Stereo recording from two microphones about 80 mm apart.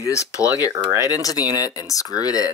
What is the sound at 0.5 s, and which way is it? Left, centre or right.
Speech, left.